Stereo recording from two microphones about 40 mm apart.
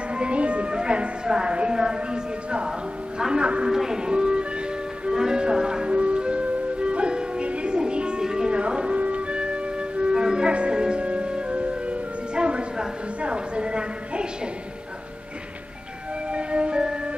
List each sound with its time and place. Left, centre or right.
0.1 s a woman's voice: right
3.6 s music: centre
16.3 s music: right